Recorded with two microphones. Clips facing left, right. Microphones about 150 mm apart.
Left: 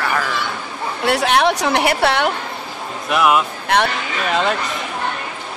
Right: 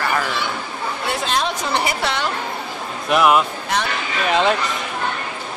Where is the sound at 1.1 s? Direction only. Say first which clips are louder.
Left 8 dB; 70° left (ahead or behind).